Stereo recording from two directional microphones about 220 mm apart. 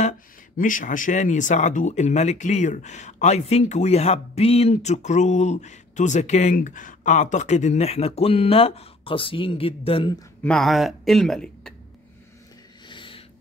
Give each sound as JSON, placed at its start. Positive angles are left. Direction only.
{"t": 0.6, "sound": "speech", "side_deg": 35}
{"t": 10.4, "sound": "speech", "side_deg": 0}
{"t": 12.8, "sound": "snort", "side_deg": 20}